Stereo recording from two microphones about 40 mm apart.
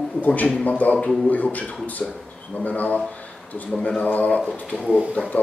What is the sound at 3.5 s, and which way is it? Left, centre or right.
Mantra, left.